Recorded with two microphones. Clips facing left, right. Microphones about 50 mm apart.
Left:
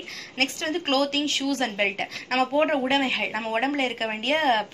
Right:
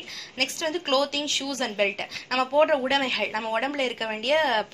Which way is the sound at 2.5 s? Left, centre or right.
Left.